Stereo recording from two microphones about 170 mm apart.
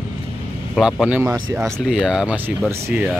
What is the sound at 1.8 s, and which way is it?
Speech, 5° right (ahead or behind).